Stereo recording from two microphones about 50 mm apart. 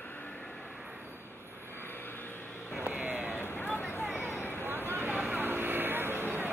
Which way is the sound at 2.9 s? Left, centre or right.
Right.